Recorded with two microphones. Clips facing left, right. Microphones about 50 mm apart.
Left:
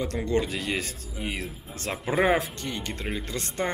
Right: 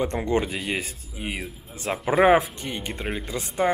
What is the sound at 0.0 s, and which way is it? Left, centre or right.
Speech, right.